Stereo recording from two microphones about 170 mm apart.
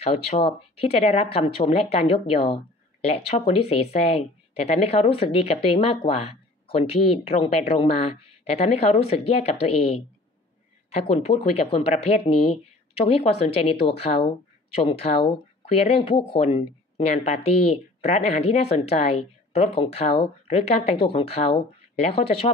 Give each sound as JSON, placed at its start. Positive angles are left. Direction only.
{"t": 0.0, "sound": "speech", "side_deg": 40}